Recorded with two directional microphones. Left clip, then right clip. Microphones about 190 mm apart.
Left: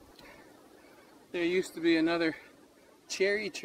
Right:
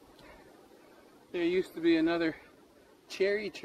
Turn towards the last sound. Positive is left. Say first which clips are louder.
# left 1 dB
turn(degrees=20)  # may be behind; listen again after turning